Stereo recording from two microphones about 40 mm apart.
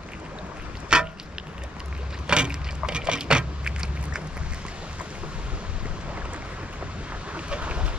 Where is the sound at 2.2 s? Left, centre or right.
Right.